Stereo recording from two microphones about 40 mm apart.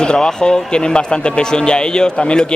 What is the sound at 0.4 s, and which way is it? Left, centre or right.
Speech, left.